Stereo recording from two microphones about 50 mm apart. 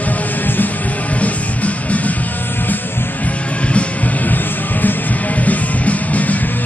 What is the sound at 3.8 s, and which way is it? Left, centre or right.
Music, left.